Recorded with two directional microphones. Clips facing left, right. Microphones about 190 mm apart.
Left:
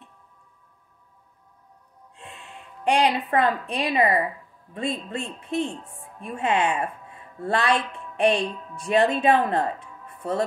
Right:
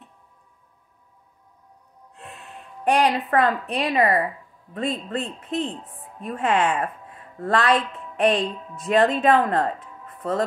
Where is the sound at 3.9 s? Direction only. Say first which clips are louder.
Right 1 dB; 40° right (ahead or behind).